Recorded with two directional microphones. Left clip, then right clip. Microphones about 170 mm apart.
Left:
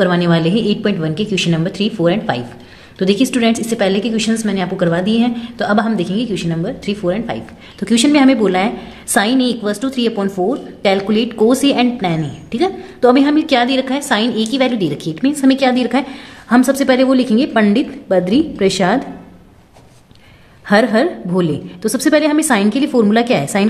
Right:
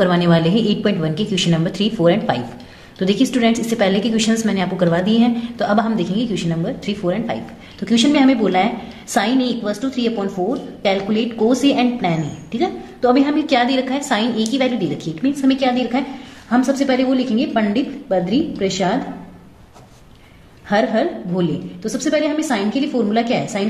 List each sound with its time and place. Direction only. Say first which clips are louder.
0.0 s a woman's voice: left 1 dB; 15° left (ahead or behind)
7.8 s a woman's voice: left 3 dB; 30° left (ahead or behind)
20.6 s a woman's voice: left 4 dB; 45° left (ahead or behind)